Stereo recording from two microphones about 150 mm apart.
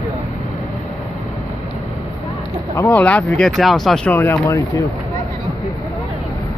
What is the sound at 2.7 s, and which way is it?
Speech, 20° left (ahead or behind).